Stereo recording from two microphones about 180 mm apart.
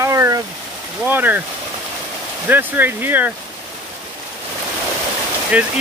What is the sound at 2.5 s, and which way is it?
Speech, 10° right (ahead or behind).